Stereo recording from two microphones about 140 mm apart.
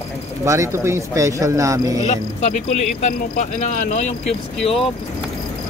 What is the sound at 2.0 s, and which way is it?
Speech, 55° left (ahead or behind).